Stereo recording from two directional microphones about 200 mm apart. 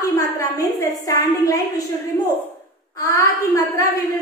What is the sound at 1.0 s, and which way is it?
Speech, 15° left (ahead or behind).